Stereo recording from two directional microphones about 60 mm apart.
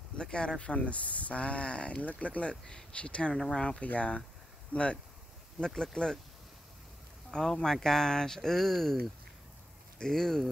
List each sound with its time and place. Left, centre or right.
0.2 s speech: centre
5.8 s speech: centre
7.2 s speech: centre